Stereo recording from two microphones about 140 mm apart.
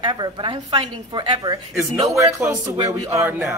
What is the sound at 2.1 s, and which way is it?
Speech, 20° right (ahead or behind).